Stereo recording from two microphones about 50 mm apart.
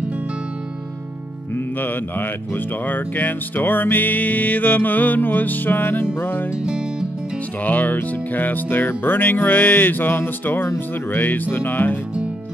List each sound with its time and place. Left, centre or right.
1.8 s speech: left
6.6 s music: centre
7.6 s speech: left